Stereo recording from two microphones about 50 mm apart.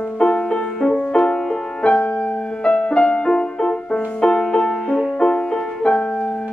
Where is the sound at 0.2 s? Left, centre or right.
Left.